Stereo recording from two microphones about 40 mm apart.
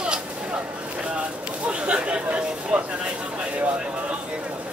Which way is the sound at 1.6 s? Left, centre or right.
Right.